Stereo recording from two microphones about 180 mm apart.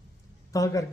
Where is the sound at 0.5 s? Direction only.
20° left (ahead or behind).